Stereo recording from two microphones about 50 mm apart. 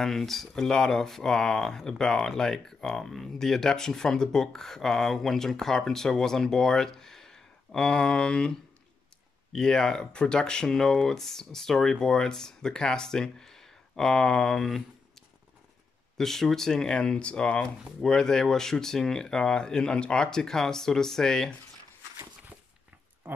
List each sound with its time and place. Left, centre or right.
0.0 s speech: centre
16.2 s speech: centre
23.2 s a sound: right